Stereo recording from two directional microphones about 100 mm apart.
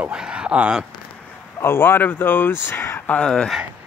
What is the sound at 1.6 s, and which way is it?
Speech, 20° left (ahead or behind).